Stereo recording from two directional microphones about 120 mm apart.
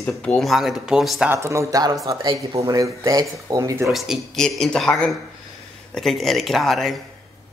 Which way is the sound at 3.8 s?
Centre (ahead or behind).